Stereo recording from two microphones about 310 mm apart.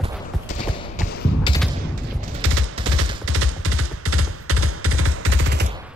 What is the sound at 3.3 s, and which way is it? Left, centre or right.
Music, right.